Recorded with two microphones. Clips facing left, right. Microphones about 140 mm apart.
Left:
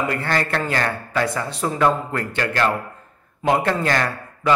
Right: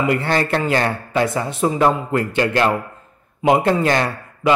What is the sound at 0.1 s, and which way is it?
A man's voice, 20° right (ahead or behind).